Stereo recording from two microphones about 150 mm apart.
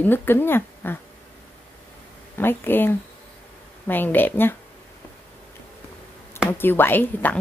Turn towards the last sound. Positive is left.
turn(degrees=10)  # may be behind; listen again after turning